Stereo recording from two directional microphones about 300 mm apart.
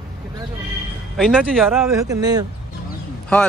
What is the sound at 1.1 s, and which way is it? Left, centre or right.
Speech, centre.